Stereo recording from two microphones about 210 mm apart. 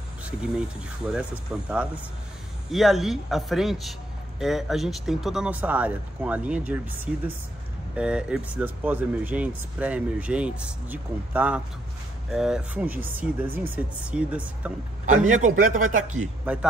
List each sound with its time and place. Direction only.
0.2 s speech: 5° right (ahead or behind)
15.4 s speech: 35° right (ahead or behind)